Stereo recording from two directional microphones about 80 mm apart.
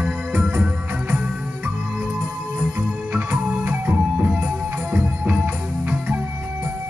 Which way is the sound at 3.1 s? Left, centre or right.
Centre.